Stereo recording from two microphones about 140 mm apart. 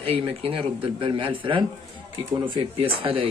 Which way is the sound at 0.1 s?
40° right (ahead or behind).